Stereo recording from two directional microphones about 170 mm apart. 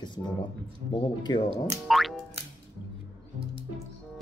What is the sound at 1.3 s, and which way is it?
Speech, 25° left (ahead or behind).